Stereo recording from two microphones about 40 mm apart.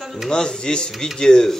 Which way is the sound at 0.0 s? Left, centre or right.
Centre.